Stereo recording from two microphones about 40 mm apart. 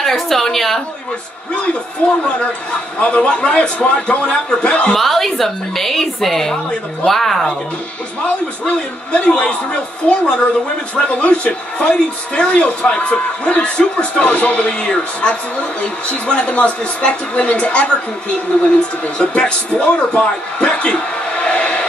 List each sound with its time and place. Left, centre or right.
0.0 s a woman's voice: centre
2.0 s speech: left
4.9 s a woman's voice: centre
8.6 s speech: left
14.7 s speech: left
19.1 s speech: left